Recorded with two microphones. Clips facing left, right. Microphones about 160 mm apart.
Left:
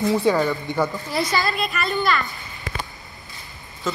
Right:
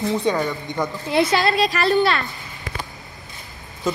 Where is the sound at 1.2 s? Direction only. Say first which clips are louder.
Right 5 dB; 70° right (ahead or behind); by 2.0 s 85° right.